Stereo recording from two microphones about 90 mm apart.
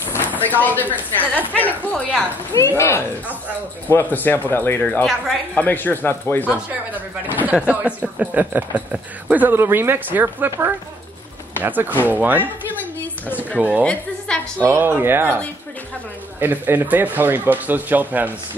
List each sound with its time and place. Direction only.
0.5 s speech: 20° left (ahead or behind)
2.7 s speech: 25° left (ahead or behind)
5.0 s speech: centre (ahead or behind)
5.6 s speech: 20° left (ahead or behind)
6.5 s speech: 20° right (ahead or behind)
13.6 s speech: 15° right (ahead or behind)
13.8 s a woman's voice: 10° left (ahead or behind)
14.6 s speech: 25° right (ahead or behind)